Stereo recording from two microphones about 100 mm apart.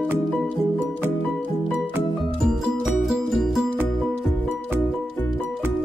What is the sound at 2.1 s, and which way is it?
Music, 5° right (ahead or behind).